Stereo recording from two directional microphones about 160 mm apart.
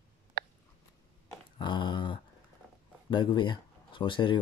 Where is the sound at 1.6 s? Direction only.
30° left (ahead or behind).